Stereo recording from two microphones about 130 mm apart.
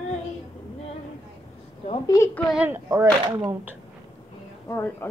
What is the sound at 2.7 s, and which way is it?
Speech, 20° right (ahead or behind).